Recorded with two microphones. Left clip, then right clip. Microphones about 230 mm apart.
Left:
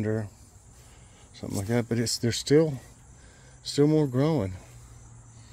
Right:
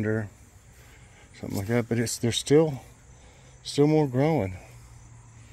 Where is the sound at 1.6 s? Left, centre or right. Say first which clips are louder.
Right 1 dB; centre.